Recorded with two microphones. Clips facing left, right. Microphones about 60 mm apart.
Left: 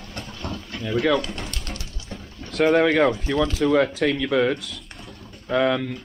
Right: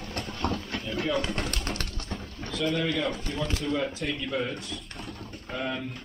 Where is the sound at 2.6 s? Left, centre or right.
Left.